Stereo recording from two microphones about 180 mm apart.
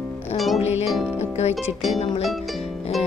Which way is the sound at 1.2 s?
35° left (ahead or behind).